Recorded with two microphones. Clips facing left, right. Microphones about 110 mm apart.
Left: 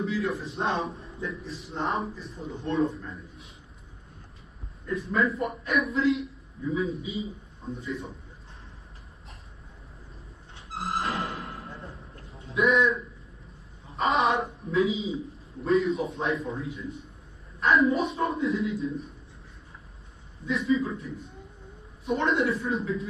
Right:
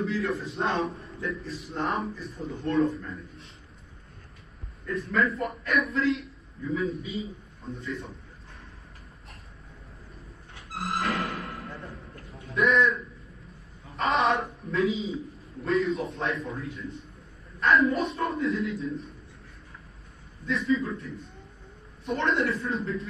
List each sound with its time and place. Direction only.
0.0 s a man's voice: centre (ahead or behind)
5.2 s a man's voice: centre (ahead or behind)
10.7 s music: 25° left (ahead or behind)
12.5 s a man's voice: 5° left (ahead or behind)
20.4 s a man's voice: centre (ahead or behind)